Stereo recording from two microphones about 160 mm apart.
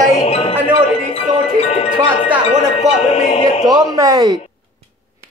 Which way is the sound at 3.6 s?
25° right (ahead or behind).